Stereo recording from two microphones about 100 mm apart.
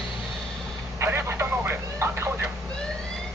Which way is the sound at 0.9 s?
25° right (ahead or behind).